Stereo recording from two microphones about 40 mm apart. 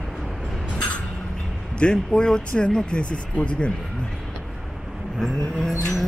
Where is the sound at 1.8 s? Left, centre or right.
Left.